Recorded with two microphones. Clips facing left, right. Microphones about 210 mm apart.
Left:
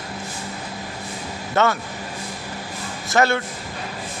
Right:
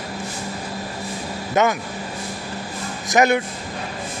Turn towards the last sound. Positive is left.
turn(degrees=-15)  # may be behind; listen again after turning